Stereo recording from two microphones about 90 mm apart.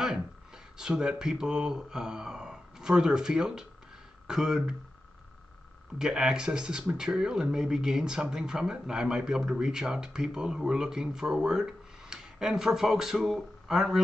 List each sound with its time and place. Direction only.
0.7 s speech: 10° right (ahead or behind)
5.9 s speech: 5° right (ahead or behind)